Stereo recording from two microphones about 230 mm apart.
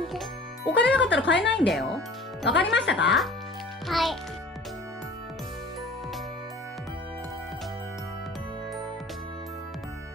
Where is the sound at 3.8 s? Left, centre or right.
Centre.